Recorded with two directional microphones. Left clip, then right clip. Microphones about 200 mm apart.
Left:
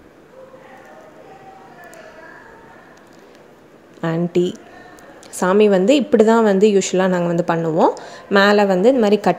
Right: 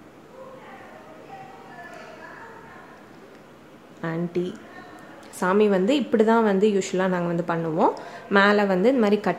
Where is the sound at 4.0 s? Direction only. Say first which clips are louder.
Left 9 dB; 30° left (ahead or behind).